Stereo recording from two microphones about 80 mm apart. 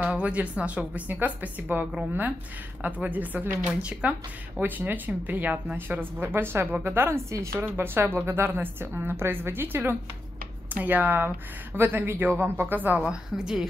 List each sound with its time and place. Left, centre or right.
0.0 s speech: centre
7.2 s speech: right
7.6 s speech: right; by 13.7 s centre